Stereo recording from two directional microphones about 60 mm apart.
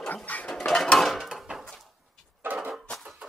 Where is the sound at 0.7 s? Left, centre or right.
Centre.